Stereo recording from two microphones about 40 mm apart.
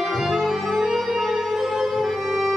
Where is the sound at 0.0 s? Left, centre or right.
Centre.